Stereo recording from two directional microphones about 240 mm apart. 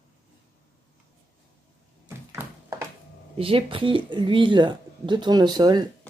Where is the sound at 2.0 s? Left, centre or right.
Centre.